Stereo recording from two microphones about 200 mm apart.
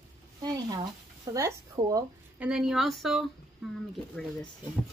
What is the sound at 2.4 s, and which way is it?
Speech, 5° right (ahead or behind).